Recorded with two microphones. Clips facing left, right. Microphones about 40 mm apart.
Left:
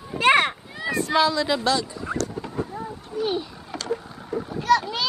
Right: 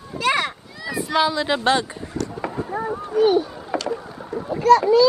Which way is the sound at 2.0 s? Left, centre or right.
Left.